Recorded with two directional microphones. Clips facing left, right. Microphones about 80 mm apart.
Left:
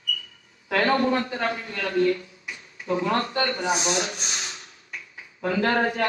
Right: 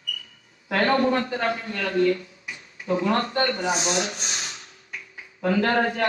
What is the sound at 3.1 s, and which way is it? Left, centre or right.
Speech, right.